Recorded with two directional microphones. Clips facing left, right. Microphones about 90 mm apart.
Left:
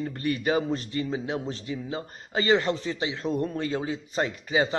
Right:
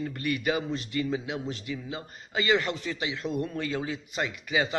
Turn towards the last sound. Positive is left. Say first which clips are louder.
# left 3 dB
turn(degrees=35)  # may be behind; listen again after turning